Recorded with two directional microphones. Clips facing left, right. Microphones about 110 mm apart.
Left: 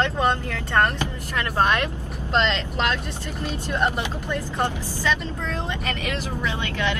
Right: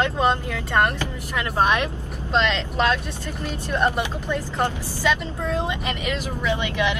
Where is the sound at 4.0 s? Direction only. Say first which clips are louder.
Right 2 dB; 15° right (ahead or behind).